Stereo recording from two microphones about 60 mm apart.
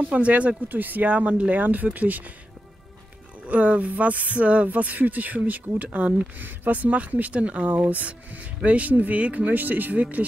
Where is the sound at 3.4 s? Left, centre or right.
Right.